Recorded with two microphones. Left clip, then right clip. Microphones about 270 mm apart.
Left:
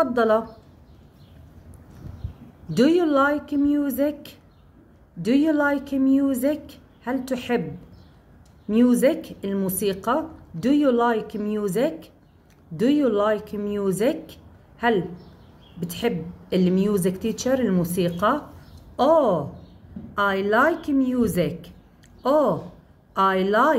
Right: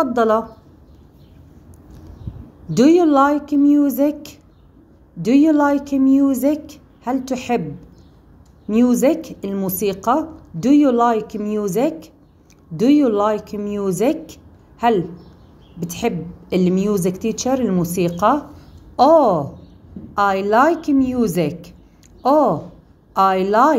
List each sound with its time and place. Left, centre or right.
0.0 s a woman's voice: centre
2.7 s a woman's voice: centre
8.6 s a woman's voice: centre